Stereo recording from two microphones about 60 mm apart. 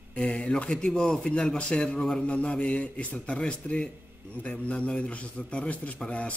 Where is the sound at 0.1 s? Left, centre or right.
Left.